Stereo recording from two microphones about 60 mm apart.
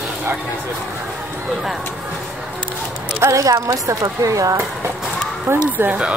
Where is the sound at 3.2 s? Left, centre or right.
Right.